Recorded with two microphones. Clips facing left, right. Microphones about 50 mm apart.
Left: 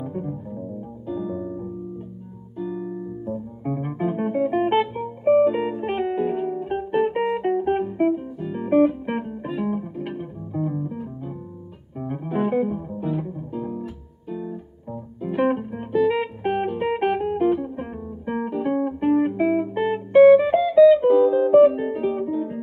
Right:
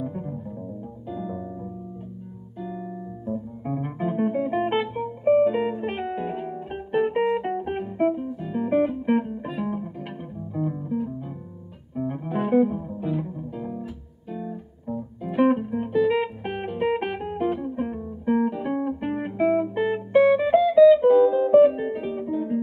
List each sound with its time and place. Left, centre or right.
0.1 s music: centre
2.6 s music: centre
12.1 s music: centre